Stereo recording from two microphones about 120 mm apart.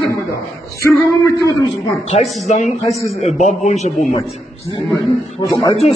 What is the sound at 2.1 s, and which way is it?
A man's voice, 70° left (ahead or behind).